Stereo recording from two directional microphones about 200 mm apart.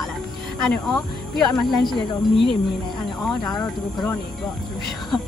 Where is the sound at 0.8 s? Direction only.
Centre (ahead or behind).